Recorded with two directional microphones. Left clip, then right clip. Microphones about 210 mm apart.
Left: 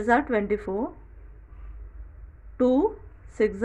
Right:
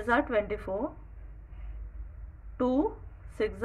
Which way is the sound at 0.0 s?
25° left (ahead or behind).